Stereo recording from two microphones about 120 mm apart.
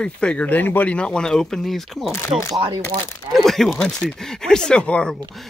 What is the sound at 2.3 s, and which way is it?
Speech, 50° right (ahead or behind).